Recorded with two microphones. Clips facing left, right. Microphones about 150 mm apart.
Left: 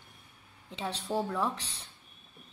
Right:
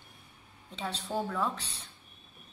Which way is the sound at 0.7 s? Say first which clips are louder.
Left 2 dB; 15° left (ahead or behind).